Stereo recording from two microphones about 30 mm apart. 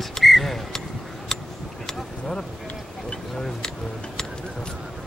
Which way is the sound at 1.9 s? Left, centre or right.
Centre.